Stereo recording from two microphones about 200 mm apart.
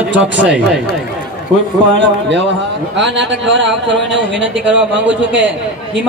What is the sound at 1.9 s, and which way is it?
A man's voice, 65° right (ahead or behind).